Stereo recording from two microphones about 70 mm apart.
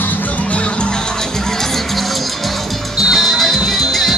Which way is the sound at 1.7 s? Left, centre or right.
Centre.